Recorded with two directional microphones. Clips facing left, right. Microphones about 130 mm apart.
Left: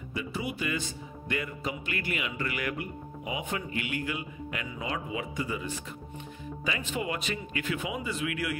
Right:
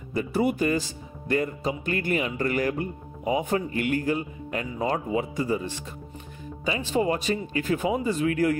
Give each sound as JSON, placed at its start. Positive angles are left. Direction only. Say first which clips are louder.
{"t": 0.1, "sound": "speech", "louder": "right 10 dB", "side_deg": -45}